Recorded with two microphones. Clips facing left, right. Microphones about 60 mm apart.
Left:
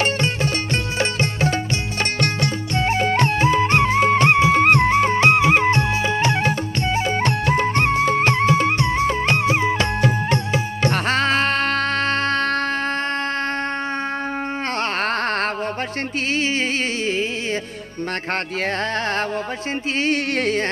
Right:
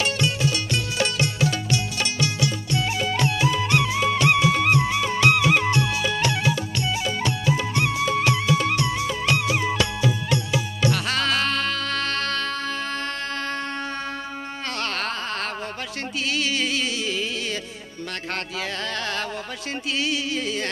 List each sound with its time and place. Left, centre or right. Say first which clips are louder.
0.9 s music: left 1 dB; left
2.7 s music: left 9 dB; left
4.6 s music: left 6 dB; left
14.8 s music: left 5 dB; left
15.2 s a sound: left 7 dB; left
20.0 s music: left 6 dB; left